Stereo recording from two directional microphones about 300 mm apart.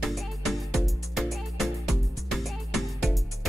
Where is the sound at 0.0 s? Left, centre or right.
Centre.